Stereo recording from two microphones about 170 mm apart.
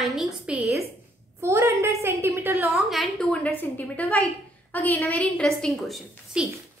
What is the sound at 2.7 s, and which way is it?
A woman's voice, centre (ahead or behind).